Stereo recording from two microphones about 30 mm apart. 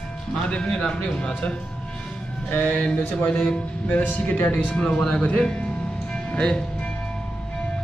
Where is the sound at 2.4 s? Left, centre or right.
Left.